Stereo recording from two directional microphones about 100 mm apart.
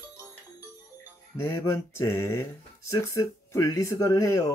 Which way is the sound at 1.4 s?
30° left (ahead or behind).